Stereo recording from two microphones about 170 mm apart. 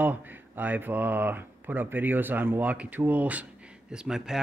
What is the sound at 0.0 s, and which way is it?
Speech, 10° right (ahead or behind).